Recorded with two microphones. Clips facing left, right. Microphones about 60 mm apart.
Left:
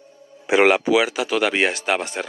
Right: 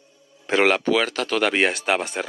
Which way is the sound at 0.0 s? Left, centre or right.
Left.